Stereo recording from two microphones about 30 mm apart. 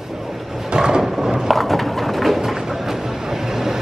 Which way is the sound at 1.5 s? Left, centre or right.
Centre.